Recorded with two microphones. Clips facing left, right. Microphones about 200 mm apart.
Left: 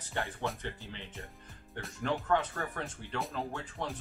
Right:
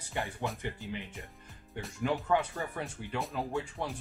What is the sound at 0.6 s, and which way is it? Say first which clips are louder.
Speech: right 4 dB; 15° right (ahead or behind).